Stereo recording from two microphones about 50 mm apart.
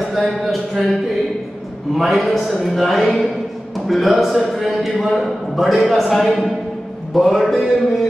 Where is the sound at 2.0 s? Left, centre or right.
Centre.